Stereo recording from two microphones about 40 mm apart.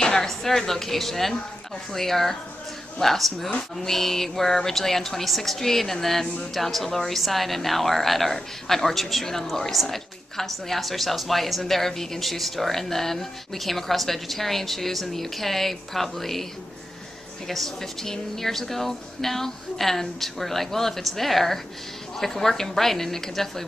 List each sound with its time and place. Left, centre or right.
0.0 s a woman's voice: centre
17.5 s a woman's voice: centre